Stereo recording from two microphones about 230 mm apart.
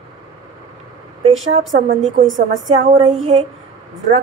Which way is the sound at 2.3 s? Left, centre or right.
Right.